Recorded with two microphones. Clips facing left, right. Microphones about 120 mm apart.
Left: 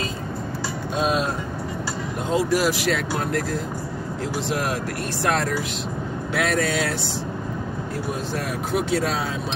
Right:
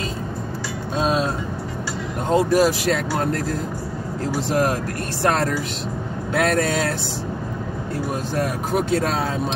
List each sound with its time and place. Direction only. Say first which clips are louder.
1.0 s music: right 2 dB; 35° right (ahead or behind)
2.3 s speech: right 4 dB; 45° right (ahead or behind)
6.3 s speech: right 3 dB; 45° right (ahead or behind)
8.7 s speech: right 2 dB; 45° right (ahead or behind)